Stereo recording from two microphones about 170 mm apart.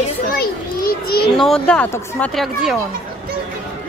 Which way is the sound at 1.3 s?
5° left (ahead or behind).